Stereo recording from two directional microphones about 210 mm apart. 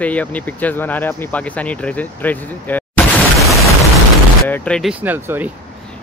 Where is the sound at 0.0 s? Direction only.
5° left (ahead or behind).